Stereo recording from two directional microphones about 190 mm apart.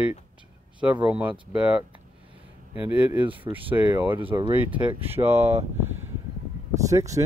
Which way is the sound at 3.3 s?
25° right (ahead or behind).